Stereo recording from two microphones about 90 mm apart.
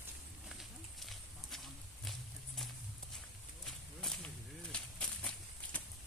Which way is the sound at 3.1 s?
5° left (ahead or behind).